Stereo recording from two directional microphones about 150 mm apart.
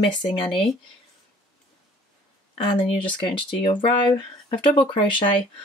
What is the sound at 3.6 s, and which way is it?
Speech, 35° left (ahead or behind).